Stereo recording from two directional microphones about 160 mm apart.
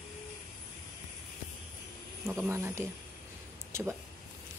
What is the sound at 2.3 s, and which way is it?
Speech, 15° right (ahead or behind).